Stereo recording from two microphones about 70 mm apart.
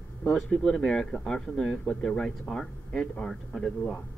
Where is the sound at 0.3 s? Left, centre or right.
Centre.